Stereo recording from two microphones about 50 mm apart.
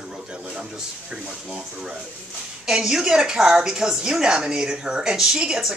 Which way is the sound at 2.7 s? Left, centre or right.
Centre.